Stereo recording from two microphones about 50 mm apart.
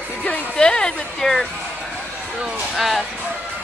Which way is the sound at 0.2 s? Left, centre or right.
Centre.